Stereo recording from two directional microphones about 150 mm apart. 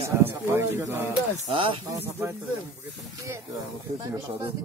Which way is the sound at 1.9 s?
15° right (ahead or behind).